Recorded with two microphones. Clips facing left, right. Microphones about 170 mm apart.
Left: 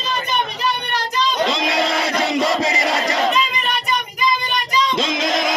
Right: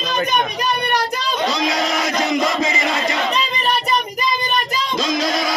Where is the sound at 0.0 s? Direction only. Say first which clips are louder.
Right 3 dB; 80° right; by 1.3 s 60° right (ahead or behind).